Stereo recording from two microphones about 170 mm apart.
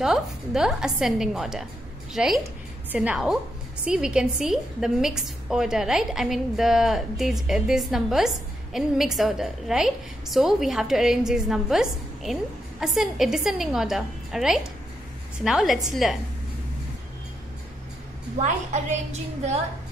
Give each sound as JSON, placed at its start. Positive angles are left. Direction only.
{"t": 0.0, "sound": "a woman's voice", "side_deg": -5}
{"t": 18.4, "sound": "a woman's voice", "side_deg": -45}